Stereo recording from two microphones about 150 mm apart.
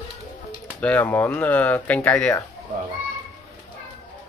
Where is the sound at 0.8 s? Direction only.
10° left (ahead or behind).